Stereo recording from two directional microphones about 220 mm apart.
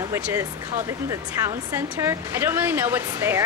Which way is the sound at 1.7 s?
10° right (ahead or behind).